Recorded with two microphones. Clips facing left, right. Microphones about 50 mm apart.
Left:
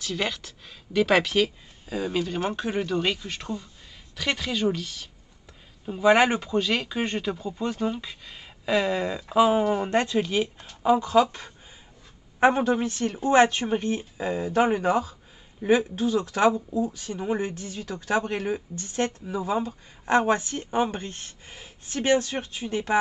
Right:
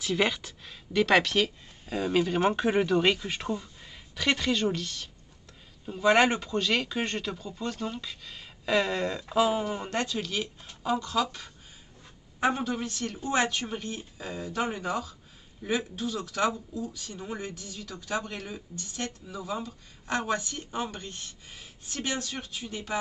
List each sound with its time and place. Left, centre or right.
0.0 s speech: centre; by 22.9 s left